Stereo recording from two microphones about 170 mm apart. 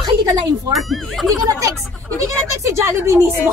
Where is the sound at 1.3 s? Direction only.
20° right (ahead or behind).